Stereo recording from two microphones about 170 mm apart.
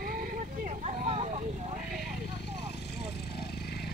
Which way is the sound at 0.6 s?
40° right (ahead or behind).